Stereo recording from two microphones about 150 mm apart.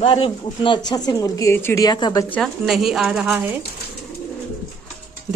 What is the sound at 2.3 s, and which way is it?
A woman's voice, centre (ahead or behind).